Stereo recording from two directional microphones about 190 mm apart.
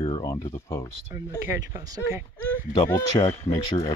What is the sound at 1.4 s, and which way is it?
Speech, 15° right (ahead or behind).